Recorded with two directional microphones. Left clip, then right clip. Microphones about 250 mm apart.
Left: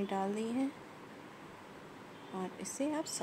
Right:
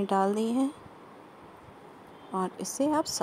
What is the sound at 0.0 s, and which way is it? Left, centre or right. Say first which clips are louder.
Speech: right 10 dB; right.